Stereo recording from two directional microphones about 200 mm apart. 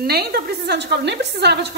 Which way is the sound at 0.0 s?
50° right (ahead or behind).